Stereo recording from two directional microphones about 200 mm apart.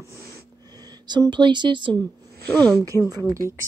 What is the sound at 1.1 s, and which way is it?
Speech, 20° right (ahead or behind).